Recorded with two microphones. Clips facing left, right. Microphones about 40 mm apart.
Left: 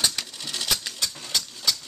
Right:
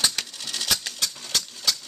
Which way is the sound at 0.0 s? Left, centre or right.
Centre.